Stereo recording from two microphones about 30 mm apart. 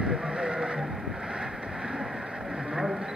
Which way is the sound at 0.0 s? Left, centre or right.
Right.